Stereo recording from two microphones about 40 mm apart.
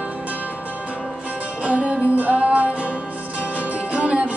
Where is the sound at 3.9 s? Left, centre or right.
Right.